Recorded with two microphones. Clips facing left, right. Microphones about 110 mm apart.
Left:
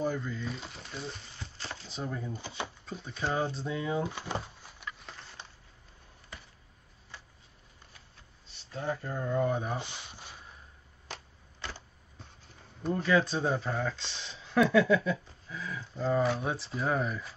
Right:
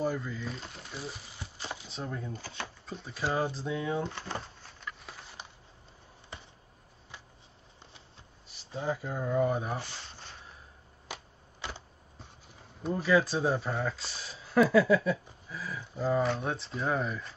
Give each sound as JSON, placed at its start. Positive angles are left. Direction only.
{"t": 0.0, "sound": "speech", "side_deg": 0}
{"t": 1.9, "sound": "speech", "side_deg": 0}
{"t": 2.3, "sound": "speech", "side_deg": 15}
{"t": 2.8, "sound": "door", "side_deg": 0}
{"t": 6.3, "sound": "a sound", "side_deg": -25}
{"t": 8.5, "sound": "speech", "side_deg": -10}
{"t": 9.8, "sound": "a sound", "side_deg": 15}
{"t": 11.1, "sound": "a sound", "side_deg": -10}
{"t": 12.8, "sound": "speech", "side_deg": -5}